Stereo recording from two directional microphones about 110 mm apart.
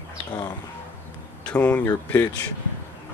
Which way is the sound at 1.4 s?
10° left (ahead or behind).